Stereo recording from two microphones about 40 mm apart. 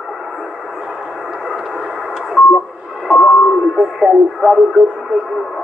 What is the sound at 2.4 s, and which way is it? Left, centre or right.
Radio, left.